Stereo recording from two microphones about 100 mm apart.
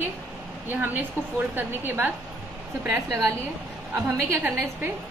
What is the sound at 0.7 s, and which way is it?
Speech, 20° right (ahead or behind).